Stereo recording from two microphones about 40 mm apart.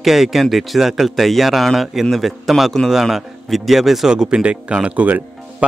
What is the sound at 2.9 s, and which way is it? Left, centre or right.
Speech, centre.